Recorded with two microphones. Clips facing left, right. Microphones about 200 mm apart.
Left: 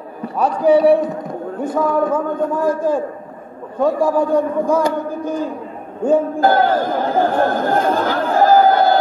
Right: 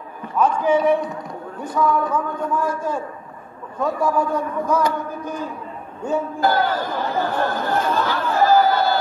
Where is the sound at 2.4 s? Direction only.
40° left (ahead or behind).